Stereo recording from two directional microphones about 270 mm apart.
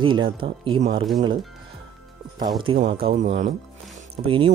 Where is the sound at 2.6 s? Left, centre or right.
Centre.